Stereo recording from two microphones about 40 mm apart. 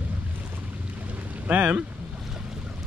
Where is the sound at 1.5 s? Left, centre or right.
Right.